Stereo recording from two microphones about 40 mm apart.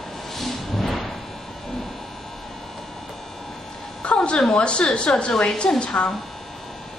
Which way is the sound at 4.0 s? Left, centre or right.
Left.